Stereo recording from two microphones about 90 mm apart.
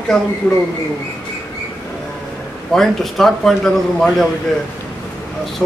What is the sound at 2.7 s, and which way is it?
A man's voice, 5° left (ahead or behind).